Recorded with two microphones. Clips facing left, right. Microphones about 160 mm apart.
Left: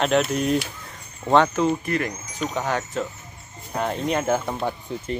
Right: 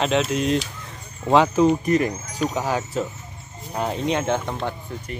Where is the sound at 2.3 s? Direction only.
10° right (ahead or behind).